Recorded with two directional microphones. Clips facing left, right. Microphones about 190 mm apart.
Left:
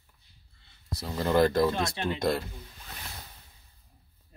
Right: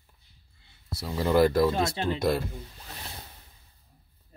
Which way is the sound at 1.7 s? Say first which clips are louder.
Right 3 dB; 25° right (ahead or behind).